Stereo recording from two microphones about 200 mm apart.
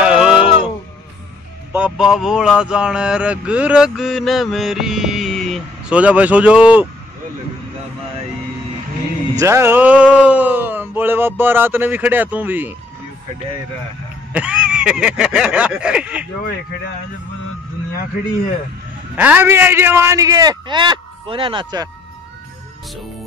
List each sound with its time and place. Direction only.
0.0 s a sound: 5° right (ahead or behind)
1.7 s speech: 5° right (ahead or behind)
9.4 s speech: 15° right (ahead or behind)
14.3 s speech: 5° right (ahead or behind)
19.1 s speech: 10° right (ahead or behind)